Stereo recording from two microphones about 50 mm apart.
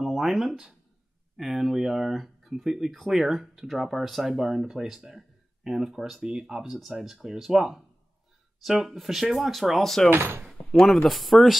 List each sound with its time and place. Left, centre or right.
0.0 s speech: centre
10.1 s speech: right
10.4 s speech: centre